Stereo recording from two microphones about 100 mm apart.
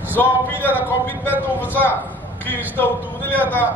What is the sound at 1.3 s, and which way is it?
Speech, 20° right (ahead or behind).